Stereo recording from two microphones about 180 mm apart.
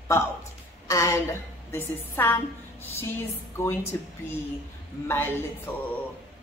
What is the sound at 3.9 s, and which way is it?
Speech, 10° left (ahead or behind).